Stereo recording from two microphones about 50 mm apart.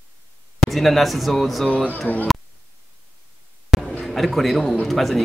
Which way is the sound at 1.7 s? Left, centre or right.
Left.